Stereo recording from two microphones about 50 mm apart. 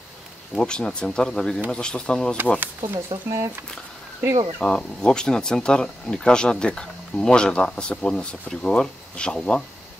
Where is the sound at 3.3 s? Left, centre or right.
Right.